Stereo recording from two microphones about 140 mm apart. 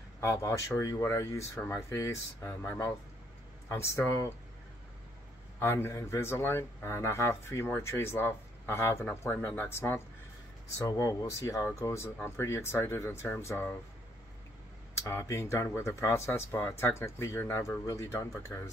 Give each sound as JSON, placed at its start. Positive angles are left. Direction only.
{"t": 0.2, "sound": "speech", "side_deg": 20}
{"t": 5.6, "sound": "speech", "side_deg": 20}
{"t": 15.0, "sound": "speech", "side_deg": 20}